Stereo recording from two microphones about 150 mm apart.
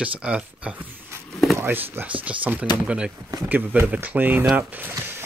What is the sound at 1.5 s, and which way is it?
Speech, 15° right (ahead or behind).